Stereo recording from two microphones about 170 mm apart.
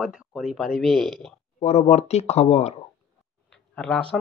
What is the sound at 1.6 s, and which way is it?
Speech, 40° left (ahead or behind).